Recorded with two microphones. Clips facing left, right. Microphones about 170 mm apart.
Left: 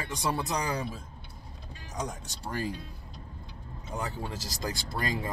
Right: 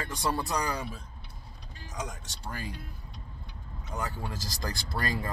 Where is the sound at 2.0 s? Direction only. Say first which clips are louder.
Left 3 dB; 35° left (ahead or behind).